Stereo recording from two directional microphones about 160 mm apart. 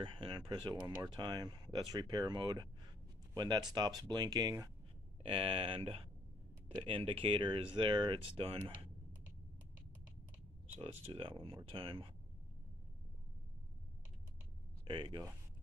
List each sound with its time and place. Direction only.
0.0 s speech: 30° right (ahead or behind)
5.2 s speech: 35° right (ahead or behind)
10.8 s speech: 35° right (ahead or behind)
14.9 s speech: 30° right (ahead or behind)